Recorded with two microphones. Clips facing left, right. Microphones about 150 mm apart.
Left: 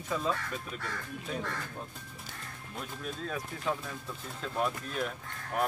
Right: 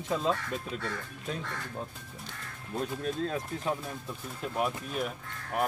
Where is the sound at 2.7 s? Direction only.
35° right (ahead or behind).